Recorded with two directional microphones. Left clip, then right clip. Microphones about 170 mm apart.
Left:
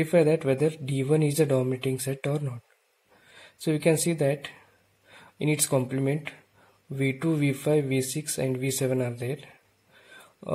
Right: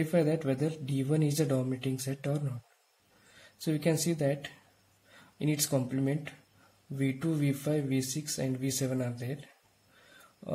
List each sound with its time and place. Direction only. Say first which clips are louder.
0.0 s speech: left 7 dB; 25° left (ahead or behind)
3.3 s speech: left 6 dB; 25° left (ahead or behind)